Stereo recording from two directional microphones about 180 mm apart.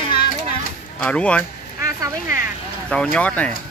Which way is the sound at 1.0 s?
5° left (ahead or behind).